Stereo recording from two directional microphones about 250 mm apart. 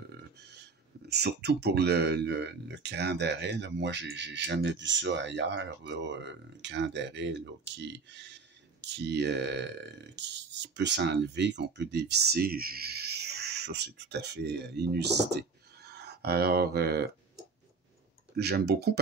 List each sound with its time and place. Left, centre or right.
0.4 s speech: right
18.4 s speech: right